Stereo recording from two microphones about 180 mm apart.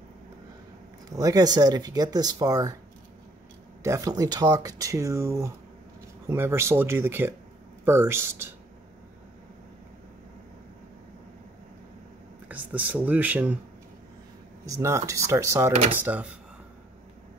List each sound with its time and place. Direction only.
1.1 s speech: 20° right (ahead or behind)
3.8 s speech: 20° right (ahead or behind)
12.4 s speech: 10° right (ahead or behind)
14.8 s speech: 15° right (ahead or behind)